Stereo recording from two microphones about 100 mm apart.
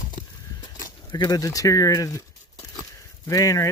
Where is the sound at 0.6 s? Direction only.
45° left (ahead or behind).